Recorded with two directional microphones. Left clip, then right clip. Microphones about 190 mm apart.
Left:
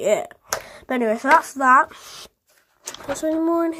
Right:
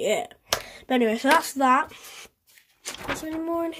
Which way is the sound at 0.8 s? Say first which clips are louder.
Left 2 dB; 5° left (ahead or behind).